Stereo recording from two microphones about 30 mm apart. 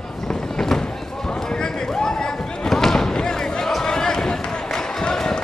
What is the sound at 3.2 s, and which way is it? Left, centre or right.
Basketball bounce, centre.